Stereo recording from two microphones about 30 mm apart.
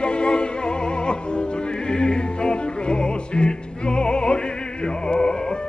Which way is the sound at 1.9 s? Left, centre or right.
Left.